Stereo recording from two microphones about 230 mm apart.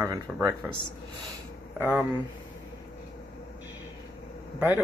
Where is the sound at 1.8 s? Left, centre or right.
Centre.